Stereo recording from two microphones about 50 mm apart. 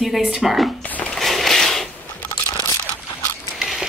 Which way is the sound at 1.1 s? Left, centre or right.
Centre.